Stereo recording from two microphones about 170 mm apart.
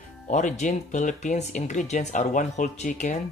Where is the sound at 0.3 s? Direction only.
45° left (ahead or behind).